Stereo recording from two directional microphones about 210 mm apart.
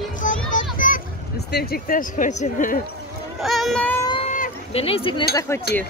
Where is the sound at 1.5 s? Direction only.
50° left (ahead or behind).